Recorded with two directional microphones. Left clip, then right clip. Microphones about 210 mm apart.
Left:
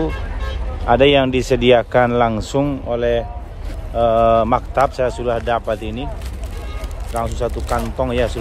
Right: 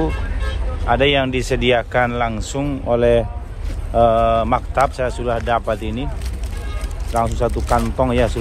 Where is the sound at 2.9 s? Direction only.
Centre (ahead or behind).